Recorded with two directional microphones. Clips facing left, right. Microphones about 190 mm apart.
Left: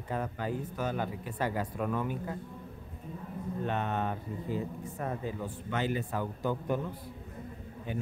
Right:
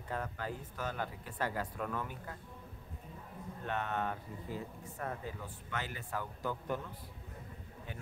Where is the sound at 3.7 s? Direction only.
20° left (ahead or behind).